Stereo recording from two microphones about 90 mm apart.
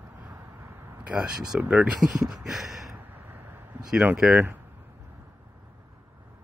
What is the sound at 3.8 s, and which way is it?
Speech, 10° right (ahead or behind).